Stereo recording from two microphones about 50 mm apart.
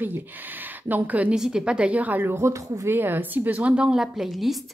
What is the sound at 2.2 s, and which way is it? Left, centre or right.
Speech, right.